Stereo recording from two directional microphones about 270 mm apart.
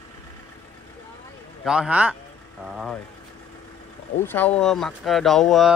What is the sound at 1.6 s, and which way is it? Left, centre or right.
Speech, centre.